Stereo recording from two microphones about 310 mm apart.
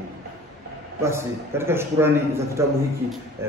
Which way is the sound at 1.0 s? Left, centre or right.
Centre.